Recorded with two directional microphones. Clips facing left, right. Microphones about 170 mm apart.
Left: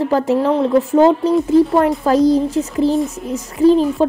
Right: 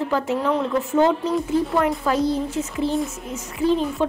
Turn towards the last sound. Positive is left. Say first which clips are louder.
# left 8 dB
turn(degrees=35)  # may be behind; listen again after turning